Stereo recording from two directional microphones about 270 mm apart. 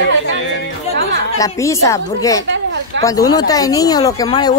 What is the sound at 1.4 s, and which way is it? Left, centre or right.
Speech, centre.